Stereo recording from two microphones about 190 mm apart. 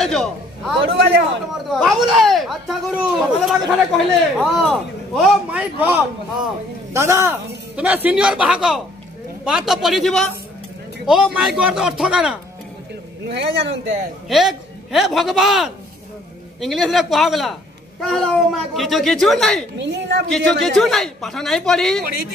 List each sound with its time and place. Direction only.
0.0 s a man's voice: centre (ahead or behind)
13.3 s speech: 65° right (ahead or behind)
14.3 s speech: centre (ahead or behind)
19.8 s speech: 65° right (ahead or behind)
20.2 s speech: centre (ahead or behind)